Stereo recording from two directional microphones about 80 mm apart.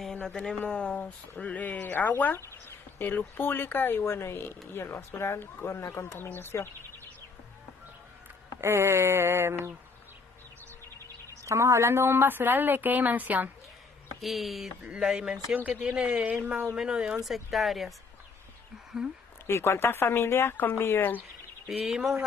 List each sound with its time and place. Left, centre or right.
0.0 s speech: centre; by 6.7 s left
8.5 s a sound: right
11.4 s speech: right
14.2 s a woman's voice: centre
15.5 s a woman's voice: centre
19.4 s speech: left
21.6 s a woman's voice: centre